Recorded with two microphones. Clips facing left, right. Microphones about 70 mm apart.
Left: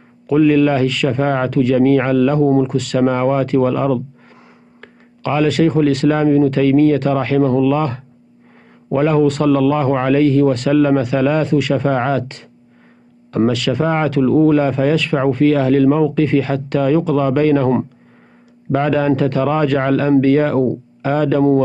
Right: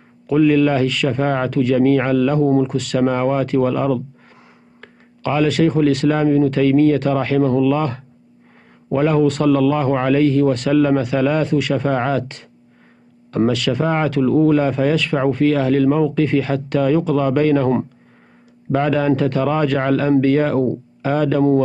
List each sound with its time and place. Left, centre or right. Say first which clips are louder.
0.3 s speech: left 2 dB; left